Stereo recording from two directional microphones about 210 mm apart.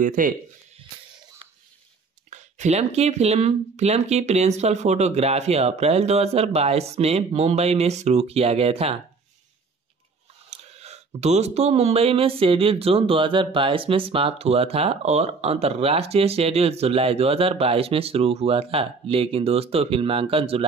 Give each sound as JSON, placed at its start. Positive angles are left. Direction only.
{"t": 0.0, "sound": "speech", "side_deg": -40}
{"t": 2.3, "sound": "speech", "side_deg": -35}
{"t": 10.5, "sound": "speech", "side_deg": -30}